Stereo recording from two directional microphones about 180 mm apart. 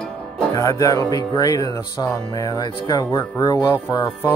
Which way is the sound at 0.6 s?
20° left (ahead or behind).